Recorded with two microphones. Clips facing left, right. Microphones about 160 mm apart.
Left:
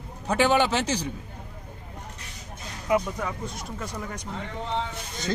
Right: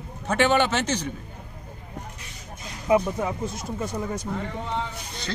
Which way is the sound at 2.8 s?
25° right (ahead or behind).